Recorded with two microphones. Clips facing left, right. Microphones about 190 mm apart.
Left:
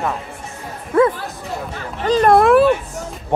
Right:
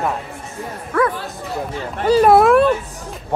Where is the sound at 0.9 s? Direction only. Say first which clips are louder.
Left 4 dB; 25° left (ahead or behind).